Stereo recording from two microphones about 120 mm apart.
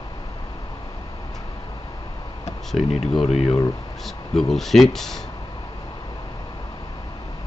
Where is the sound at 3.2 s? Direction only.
60° left (ahead or behind).